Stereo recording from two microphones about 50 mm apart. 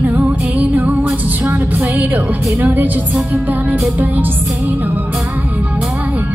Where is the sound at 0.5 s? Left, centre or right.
Right.